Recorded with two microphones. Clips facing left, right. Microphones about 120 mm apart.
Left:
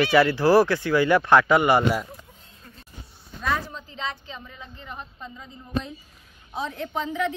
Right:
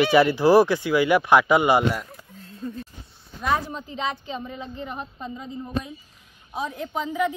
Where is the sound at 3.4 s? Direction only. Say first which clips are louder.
Right 3 dB; 20° right (ahead or behind).